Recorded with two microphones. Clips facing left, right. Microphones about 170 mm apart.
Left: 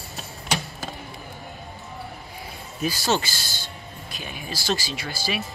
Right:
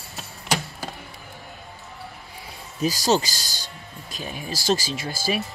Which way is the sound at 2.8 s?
40° right (ahead or behind).